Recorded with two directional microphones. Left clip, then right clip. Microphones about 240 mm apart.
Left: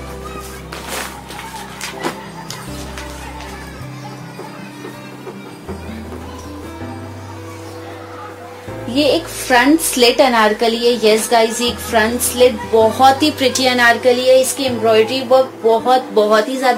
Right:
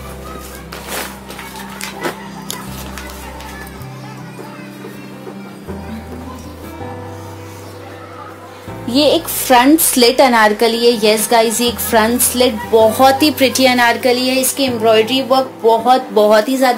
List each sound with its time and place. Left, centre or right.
9.0 s a woman's voice: right